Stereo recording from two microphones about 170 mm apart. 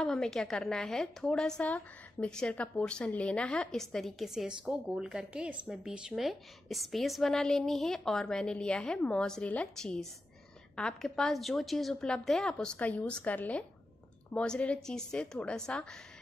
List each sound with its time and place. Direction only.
0.0 s a woman's voice: 5° left (ahead or behind)